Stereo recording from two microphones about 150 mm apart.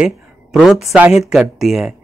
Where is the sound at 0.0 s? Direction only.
5° right (ahead or behind).